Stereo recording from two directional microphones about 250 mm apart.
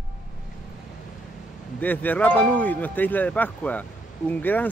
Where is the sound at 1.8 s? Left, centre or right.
Centre.